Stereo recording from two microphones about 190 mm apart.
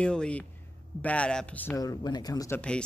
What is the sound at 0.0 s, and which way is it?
Speech, 5° left (ahead or behind).